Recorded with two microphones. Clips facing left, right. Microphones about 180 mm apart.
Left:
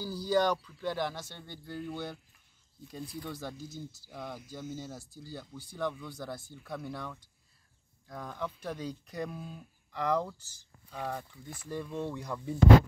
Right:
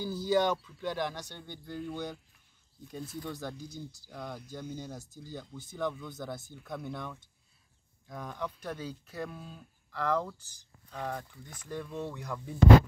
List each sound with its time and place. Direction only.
0.0 s speech: centre (ahead or behind)
1.1 s speech: 15° right (ahead or behind)
1.4 s speech: centre (ahead or behind)
3.5 s speech: 15° right (ahead or behind)
4.1 s speech: 5° left (ahead or behind)
4.9 s speech: 20° right (ahead or behind)
5.3 s speech: 5° left (ahead or behind)
10.3 s speech: 15° right (ahead or behind)
10.9 s speech: 10° left (ahead or behind)